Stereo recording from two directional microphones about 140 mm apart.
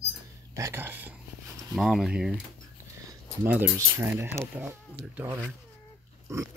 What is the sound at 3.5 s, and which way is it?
Speech, 10° right (ahead or behind).